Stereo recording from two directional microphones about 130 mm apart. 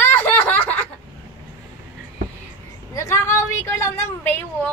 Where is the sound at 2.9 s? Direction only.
20° left (ahead or behind).